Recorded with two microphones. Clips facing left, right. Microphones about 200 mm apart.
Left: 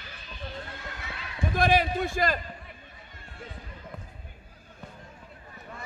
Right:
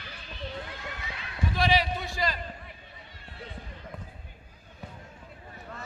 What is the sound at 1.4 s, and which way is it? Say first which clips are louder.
Speech: left 2 dB; 50° left (ahead or behind).